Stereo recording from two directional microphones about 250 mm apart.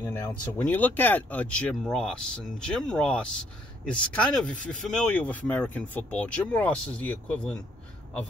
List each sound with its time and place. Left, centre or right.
0.0 s speech: centre